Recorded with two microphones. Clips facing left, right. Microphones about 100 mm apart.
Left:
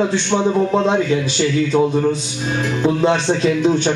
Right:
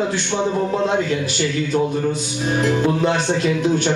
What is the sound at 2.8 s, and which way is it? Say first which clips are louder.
A man's voice: left 2 dB; 20° left (ahead or behind).